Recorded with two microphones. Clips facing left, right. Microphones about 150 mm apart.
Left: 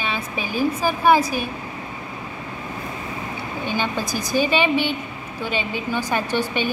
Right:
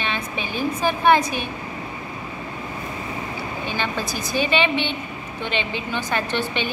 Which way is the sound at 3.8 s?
10° left (ahead or behind).